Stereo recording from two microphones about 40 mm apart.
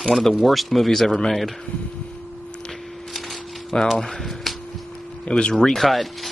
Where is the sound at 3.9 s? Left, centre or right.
Centre.